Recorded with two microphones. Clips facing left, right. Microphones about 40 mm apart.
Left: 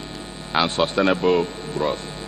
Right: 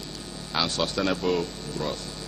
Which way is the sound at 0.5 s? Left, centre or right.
Left.